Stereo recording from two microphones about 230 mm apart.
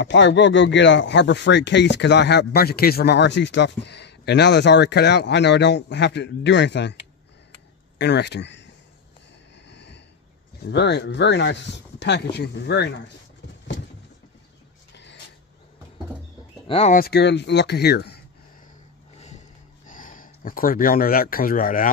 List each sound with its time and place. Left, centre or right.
0.0 s speech: left
8.0 s speech: left
9.7 s a sound: left
10.6 s speech: left
16.6 s speech: left
16.9 s speech: left
19.1 s a sound: left
19.9 s speech: left